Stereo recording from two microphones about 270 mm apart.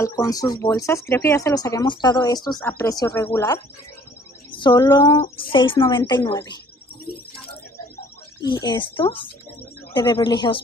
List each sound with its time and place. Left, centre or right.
0.0 s speech: centre
8.4 s speech: centre